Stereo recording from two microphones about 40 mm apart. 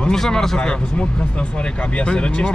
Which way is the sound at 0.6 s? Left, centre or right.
Left.